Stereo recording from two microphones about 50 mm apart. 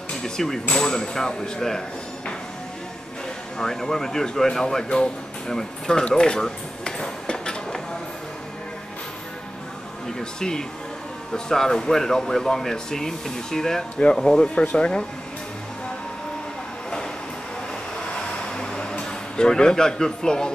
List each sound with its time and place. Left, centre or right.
0.2 s speech: centre
3.5 s speech: centre
10.0 s speech: centre
18.1 s a sound: centre